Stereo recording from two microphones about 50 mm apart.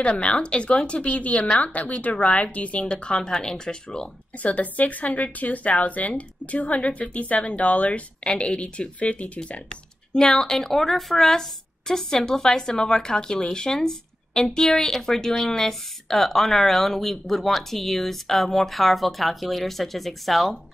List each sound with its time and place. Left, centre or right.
0.2 s speech: left
2.9 s speech: centre
4.4 s speech: left
10.1 s speech: centre